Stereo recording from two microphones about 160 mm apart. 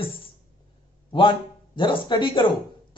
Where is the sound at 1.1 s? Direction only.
30° left (ahead or behind).